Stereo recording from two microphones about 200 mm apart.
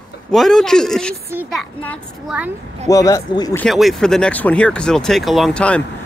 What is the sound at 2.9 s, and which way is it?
Speech, 15° left (ahead or behind).